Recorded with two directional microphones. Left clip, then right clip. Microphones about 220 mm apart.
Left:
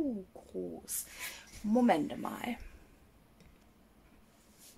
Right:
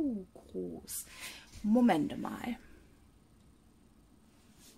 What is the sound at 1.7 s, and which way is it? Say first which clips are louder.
Speech: even; 20° right (ahead or behind).